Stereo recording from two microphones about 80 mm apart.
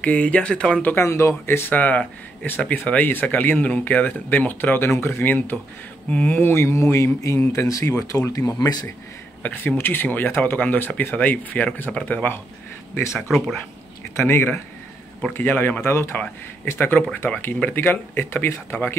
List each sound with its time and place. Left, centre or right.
0.0 s speech: centre
0.9 s speech: left
1.7 s speech: centre; by 8.8 s left
9.4 s speech: left
14.1 s speech: left